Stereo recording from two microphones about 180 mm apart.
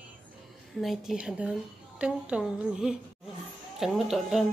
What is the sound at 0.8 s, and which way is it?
Speech, centre (ahead or behind).